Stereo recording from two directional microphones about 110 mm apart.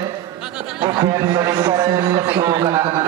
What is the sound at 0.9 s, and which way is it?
A man's voice, 35° right (ahead or behind).